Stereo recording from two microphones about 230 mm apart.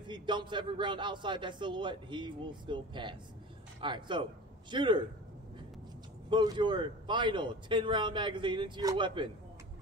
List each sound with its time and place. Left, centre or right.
0.0 s a man's voice: centre
6.3 s a man's voice: centre